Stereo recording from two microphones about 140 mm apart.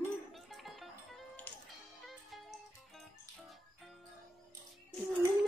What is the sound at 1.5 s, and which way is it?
Music, 15° left (ahead or behind).